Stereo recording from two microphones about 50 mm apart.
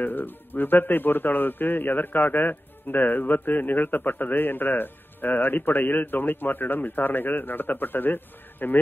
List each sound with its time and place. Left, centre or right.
0.0 s a man's voice: left